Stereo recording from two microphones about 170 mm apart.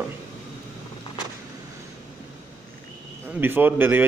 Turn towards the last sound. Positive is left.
turn(degrees=-10)  # may be behind; listen again after turning